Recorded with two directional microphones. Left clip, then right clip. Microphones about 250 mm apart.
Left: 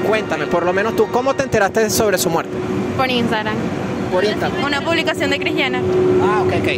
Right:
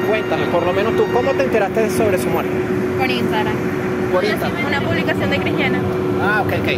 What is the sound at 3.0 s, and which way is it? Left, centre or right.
Speech, left.